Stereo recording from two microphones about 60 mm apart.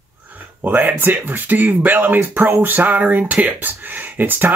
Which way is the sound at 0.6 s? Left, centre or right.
Right.